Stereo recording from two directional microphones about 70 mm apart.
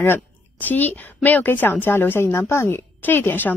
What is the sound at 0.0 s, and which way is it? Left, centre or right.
Speech, left.